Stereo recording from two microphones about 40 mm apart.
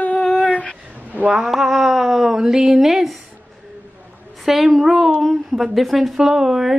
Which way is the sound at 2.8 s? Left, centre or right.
Centre.